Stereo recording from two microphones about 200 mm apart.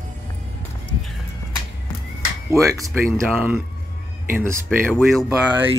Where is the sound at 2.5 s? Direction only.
15° right (ahead or behind).